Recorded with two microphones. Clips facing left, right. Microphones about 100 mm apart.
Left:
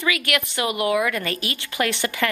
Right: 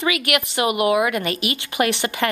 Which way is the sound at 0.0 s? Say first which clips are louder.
Right 2 dB; 20° right (ahead or behind).